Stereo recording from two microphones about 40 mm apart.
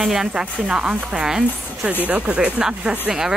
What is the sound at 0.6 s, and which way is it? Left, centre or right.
Speech, right.